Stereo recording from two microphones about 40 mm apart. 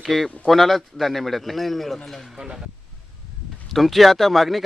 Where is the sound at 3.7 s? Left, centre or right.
Centre.